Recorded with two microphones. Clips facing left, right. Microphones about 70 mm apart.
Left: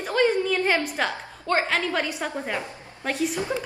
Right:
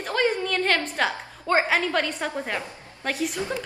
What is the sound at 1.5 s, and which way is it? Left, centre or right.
Speech, centre.